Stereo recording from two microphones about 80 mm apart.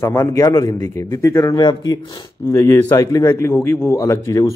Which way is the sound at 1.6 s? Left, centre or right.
Left.